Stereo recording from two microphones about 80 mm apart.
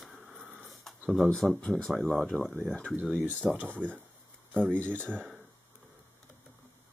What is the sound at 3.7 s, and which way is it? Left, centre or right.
Speech, centre.